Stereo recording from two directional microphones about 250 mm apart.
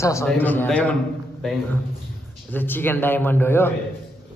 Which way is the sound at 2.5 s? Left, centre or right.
Centre.